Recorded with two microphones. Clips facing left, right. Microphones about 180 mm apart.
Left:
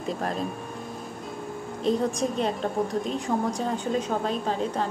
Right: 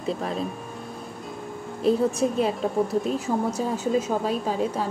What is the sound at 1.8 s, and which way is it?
A woman's voice, 5° right (ahead or behind).